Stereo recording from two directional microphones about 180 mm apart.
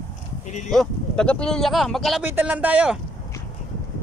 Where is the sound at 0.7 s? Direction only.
5° left (ahead or behind).